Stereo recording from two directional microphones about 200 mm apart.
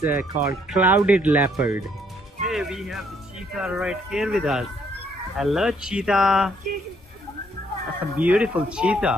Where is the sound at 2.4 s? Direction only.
Centre (ahead or behind).